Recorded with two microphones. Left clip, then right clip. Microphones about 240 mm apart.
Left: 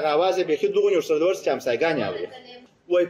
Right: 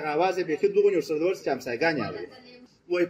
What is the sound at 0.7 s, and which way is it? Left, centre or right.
A man's voice, right.